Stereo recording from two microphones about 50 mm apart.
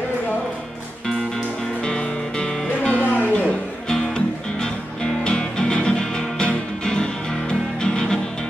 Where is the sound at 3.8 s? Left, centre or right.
Centre.